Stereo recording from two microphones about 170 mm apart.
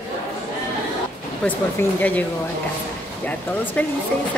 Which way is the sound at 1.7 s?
10° left (ahead or behind).